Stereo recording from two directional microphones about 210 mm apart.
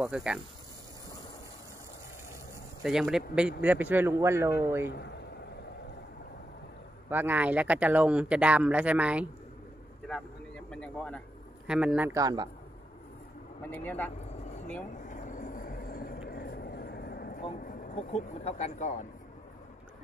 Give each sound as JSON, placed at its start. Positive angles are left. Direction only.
{"t": 0.0, "sound": "speech", "side_deg": -5}
{"t": 2.8, "sound": "speech", "side_deg": 0}
{"t": 7.1, "sound": "speech", "side_deg": -10}
{"t": 10.0, "sound": "a sound", "side_deg": 5}
{"t": 12.1, "sound": "speech", "side_deg": -15}
{"t": 13.7, "sound": "speech", "side_deg": 10}
{"t": 15.0, "sound": "vehicle", "side_deg": 35}
{"t": 17.9, "sound": "speech", "side_deg": 30}